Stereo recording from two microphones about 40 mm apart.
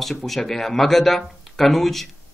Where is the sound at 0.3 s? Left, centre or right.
Centre.